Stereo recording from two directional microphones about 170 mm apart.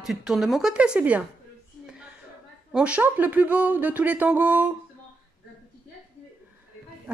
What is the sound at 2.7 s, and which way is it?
Speech, 5° right (ahead or behind).